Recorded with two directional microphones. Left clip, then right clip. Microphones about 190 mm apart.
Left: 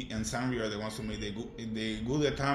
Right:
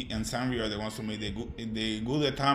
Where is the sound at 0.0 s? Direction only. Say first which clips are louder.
Right 2 dB; 25° right (ahead or behind).